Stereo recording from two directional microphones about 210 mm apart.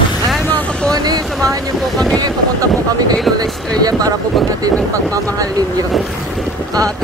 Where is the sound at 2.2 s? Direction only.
20° right (ahead or behind).